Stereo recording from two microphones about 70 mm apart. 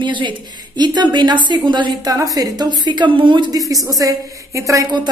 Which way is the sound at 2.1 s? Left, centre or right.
Right.